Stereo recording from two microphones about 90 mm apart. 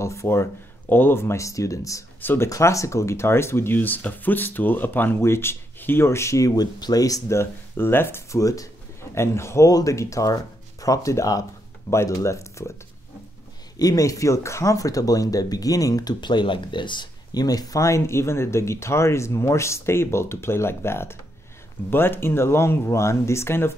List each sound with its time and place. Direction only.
0.0 s speech: 30° left (ahead or behind)
8.4 s speech: 40° left (ahead or behind)
9.7 s speech: 40° left (ahead or behind)
13.7 s speech: 45° left (ahead or behind); by 23.7 s 30° left (ahead or behind)